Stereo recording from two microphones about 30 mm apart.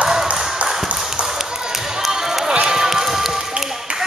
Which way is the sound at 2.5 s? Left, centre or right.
Right.